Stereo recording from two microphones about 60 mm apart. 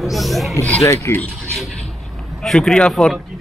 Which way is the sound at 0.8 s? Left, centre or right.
Left.